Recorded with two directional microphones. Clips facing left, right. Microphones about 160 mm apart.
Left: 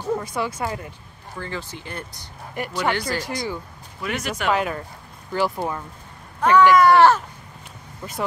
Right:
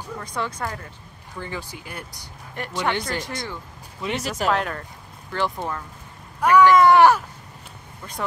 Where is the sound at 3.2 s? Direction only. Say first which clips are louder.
Left 4 dB; centre (ahead or behind).